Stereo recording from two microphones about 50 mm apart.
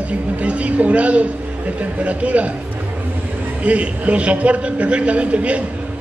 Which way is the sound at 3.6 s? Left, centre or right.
Right.